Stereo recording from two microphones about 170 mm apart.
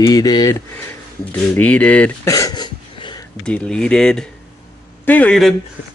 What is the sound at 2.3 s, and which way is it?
Cough, 20° left (ahead or behind).